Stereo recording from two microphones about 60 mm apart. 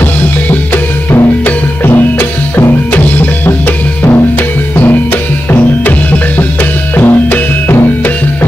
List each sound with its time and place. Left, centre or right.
1.9 s music: left
5.5 s music: left